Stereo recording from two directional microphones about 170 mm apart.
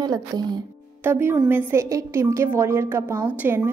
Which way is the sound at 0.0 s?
25° right (ahead or behind).